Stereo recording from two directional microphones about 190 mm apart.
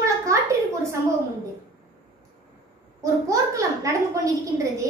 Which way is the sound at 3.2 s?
15° right (ahead or behind).